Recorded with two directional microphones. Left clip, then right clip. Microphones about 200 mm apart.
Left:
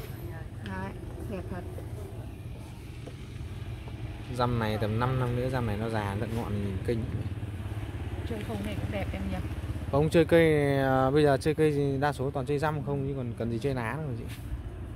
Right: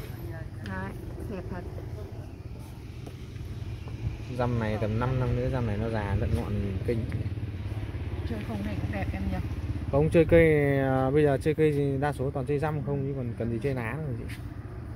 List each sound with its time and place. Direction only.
0.7 s vehicle: 40° left (ahead or behind)
4.4 s speech: 15° left (ahead or behind)
8.5 s speech: 50° left (ahead or behind)
9.9 s speech: 15° left (ahead or behind)